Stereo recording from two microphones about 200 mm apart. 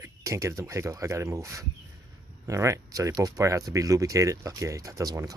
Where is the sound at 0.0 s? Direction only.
15° right (ahead or behind).